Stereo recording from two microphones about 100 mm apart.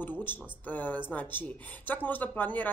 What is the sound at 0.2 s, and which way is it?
Speech, 20° left (ahead or behind).